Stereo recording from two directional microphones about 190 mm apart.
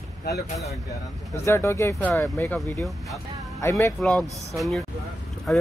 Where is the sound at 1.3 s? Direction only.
15° left (ahead or behind).